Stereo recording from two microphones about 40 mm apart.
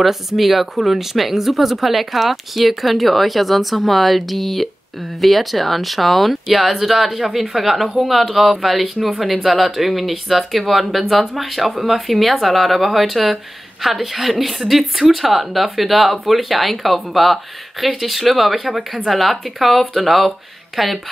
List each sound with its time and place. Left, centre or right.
0.0 s speech: centre